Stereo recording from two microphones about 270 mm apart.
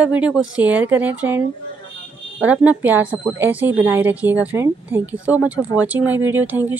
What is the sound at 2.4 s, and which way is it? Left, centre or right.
Speech, centre.